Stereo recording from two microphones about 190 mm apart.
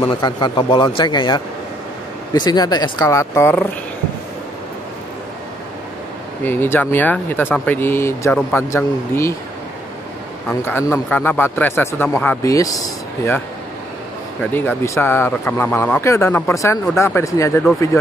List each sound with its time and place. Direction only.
0.1 s speech: 25° left (ahead or behind)
6.4 s speech: 10° left (ahead or behind)
10.6 s speech: 10° left (ahead or behind)
14.5 s speech: 10° left (ahead or behind)